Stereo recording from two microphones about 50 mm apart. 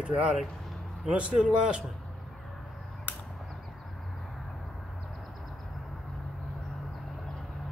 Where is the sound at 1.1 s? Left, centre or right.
Right.